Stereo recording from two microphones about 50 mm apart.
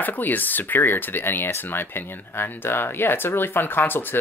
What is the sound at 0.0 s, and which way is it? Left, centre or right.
Speech, left.